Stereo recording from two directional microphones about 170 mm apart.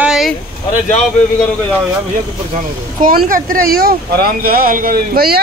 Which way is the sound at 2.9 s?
55° right (ahead or behind).